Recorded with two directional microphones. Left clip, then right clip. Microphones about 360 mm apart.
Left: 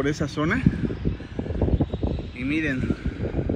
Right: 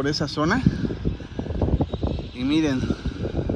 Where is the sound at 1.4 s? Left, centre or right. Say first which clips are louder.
Even; centre.